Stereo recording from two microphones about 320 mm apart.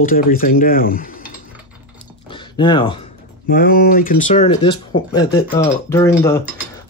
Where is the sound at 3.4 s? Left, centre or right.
Left.